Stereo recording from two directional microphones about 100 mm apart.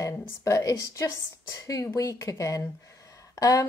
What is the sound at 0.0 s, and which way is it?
Speech, 35° left (ahead or behind).